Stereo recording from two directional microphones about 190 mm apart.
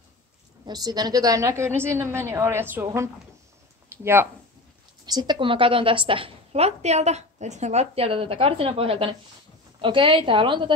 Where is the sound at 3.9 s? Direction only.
15° right (ahead or behind).